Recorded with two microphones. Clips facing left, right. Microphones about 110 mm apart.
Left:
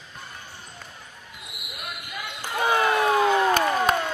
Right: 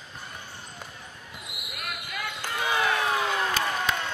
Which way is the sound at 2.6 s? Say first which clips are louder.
Left 5 dB; 50° left (ahead or behind).